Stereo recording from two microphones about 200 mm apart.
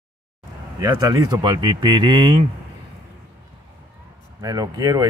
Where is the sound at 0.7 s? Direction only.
20° right (ahead or behind).